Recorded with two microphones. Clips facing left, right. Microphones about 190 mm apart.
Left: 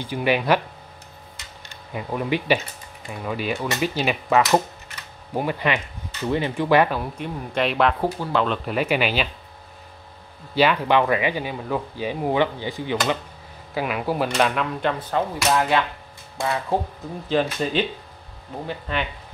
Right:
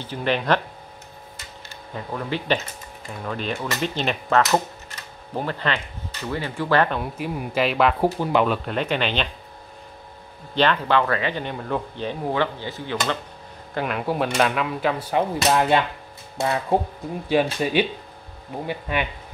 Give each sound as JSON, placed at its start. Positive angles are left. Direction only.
{"t": 0.0, "sound": "speech", "side_deg": 10}
{"t": 2.0, "sound": "speech", "side_deg": 15}
{"t": 7.0, "sound": "speech", "side_deg": -5}
{"t": 8.2, "sound": "speech", "side_deg": -15}
{"t": 8.6, "sound": "speech", "side_deg": 10}
{"t": 10.5, "sound": "speech", "side_deg": 10}
{"t": 13.7, "sound": "speech", "side_deg": 5}
{"t": 17.6, "sound": "speech", "side_deg": -10}